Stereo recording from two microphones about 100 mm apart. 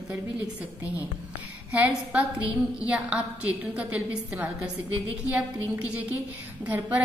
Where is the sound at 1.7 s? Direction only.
15° right (ahead or behind).